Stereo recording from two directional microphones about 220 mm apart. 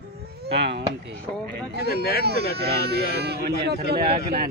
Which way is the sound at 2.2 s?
45° right (ahead or behind).